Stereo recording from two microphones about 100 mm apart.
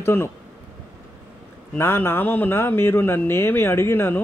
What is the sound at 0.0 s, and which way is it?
Speech, 25° left (ahead or behind).